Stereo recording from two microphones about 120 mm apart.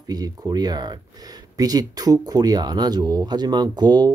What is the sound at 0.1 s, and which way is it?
Speech, 30° right (ahead or behind).